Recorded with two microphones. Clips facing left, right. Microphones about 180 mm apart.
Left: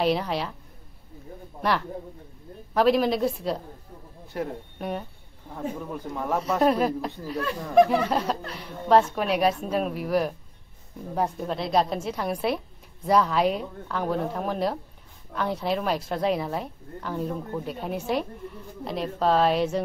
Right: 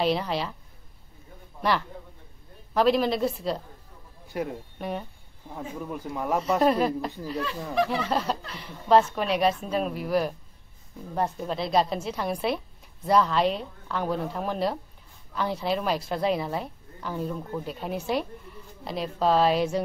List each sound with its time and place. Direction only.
0.0 s speech: centre (ahead or behind)
1.6 s a man's voice: centre (ahead or behind)
4.7 s speech: centre (ahead or behind)
7.4 s speech: 50° left (ahead or behind)
8.1 s speech: centre (ahead or behind)